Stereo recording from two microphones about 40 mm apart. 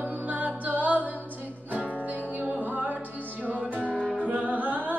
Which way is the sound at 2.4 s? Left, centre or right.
Right.